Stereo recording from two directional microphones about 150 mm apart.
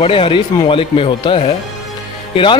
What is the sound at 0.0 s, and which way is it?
Speech, 35° left (ahead or behind).